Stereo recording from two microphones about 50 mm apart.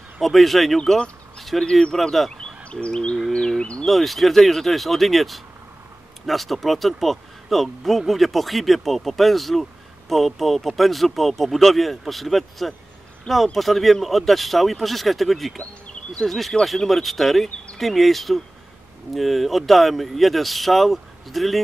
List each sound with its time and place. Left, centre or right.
0.2 s speech: centre
0.7 s speech: centre
1.4 s a sound: centre
1.7 s speech: centre
2.7 s bird: centre
3.8 s speech: centre
15.6 s a sound: left
16.3 s speech: centre